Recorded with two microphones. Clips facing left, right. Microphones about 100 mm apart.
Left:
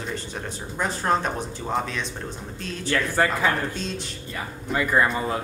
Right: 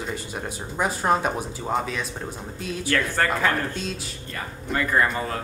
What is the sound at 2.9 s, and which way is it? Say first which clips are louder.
Speech: left 1 dB; 5° left (ahead or behind).